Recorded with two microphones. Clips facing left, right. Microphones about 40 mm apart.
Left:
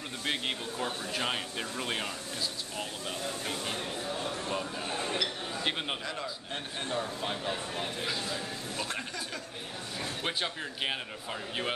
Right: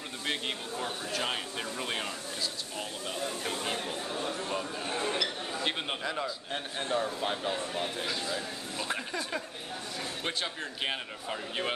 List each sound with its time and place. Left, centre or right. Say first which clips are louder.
0.2 s speech: left 1 dB; centre
3.5 s speech: right 2 dB; right
3.8 s speech: right 1 dB; centre
4.9 s speech: right 2 dB; centre
5.2 s speech: even; centre
10.2 s speech: left 1 dB; centre